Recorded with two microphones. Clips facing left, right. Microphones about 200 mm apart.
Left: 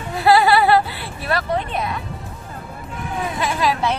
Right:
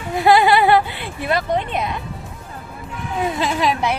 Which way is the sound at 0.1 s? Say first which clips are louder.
Right 1 dB; 20° right (ahead or behind).